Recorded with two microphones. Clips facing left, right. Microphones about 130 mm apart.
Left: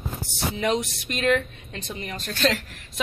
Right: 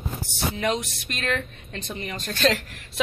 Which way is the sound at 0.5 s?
20° left (ahead or behind).